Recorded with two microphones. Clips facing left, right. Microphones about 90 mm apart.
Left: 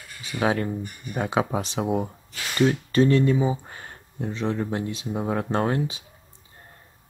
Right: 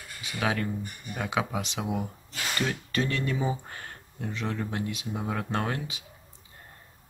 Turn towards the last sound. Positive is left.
turn(degrees=30)  # may be behind; listen again after turning